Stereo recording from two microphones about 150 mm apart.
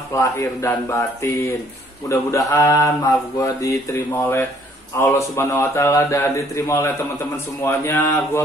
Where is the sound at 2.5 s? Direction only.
20° left (ahead or behind).